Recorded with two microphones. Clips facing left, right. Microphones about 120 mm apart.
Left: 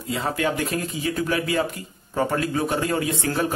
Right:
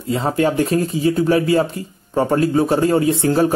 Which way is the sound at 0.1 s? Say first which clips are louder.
Right 7 dB; 35° right (ahead or behind).